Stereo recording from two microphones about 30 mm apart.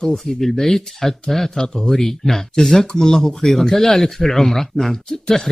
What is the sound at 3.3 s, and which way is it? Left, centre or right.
Speech, centre.